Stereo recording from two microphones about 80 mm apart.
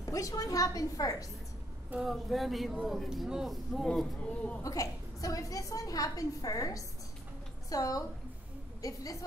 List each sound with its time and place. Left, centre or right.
0.0 s a woman's voice: left
2.0 s speech: centre
4.6 s a woman's voice: left